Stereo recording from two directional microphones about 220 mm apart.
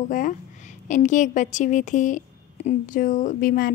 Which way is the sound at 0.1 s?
35° left (ahead or behind).